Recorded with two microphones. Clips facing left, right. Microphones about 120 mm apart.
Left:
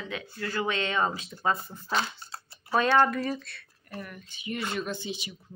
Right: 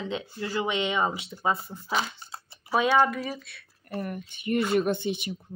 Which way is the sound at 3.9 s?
45° right (ahead or behind).